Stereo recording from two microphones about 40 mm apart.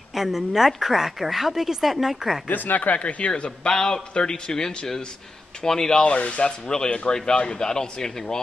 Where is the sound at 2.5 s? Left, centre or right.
Left.